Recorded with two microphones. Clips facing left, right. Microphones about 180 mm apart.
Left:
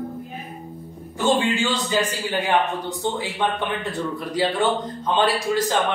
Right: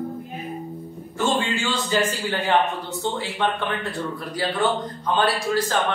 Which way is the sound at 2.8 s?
15° left (ahead or behind).